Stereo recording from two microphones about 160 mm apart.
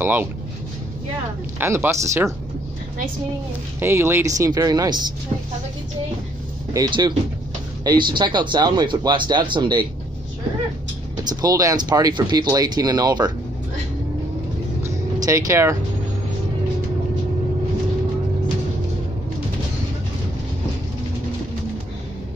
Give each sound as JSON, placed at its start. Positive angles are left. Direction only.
{"t": 0.0, "sound": "speech", "side_deg": -10}
{"t": 1.6, "sound": "speech", "side_deg": -15}
{"t": 3.8, "sound": "speech", "side_deg": -15}
{"t": 6.7, "sound": "speech", "side_deg": -25}
{"t": 11.2, "sound": "speech", "side_deg": -20}
{"t": 15.1, "sound": "speech", "side_deg": -20}